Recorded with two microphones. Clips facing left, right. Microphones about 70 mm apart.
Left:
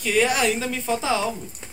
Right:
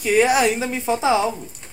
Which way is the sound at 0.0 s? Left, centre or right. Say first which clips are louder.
Right 4 dB; centre.